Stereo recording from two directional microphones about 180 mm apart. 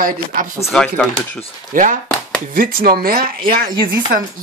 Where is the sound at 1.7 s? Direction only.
50° right (ahead or behind).